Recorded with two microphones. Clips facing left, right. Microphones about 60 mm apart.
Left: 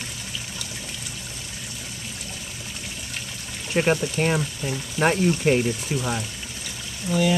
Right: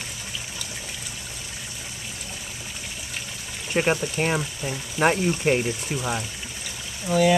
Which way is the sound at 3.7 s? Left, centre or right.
Centre.